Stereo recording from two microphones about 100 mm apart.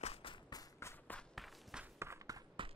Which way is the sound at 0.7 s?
25° left (ahead or behind).